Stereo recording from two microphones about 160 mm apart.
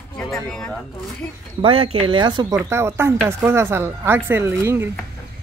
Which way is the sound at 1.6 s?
35° right (ahead or behind).